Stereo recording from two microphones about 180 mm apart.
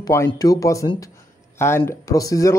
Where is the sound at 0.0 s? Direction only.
15° left (ahead or behind).